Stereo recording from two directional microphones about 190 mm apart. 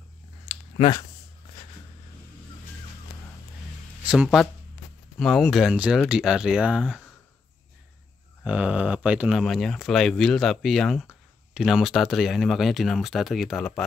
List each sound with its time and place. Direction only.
0.7 s speech: 25° left (ahead or behind)
4.1 s speech: 5° right (ahead or behind)
8.5 s speech: 5° right (ahead or behind)